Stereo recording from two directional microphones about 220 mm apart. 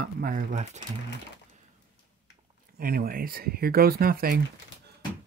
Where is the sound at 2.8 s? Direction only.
40° right (ahead or behind).